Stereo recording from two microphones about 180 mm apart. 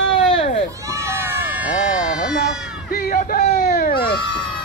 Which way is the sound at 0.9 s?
15° right (ahead or behind).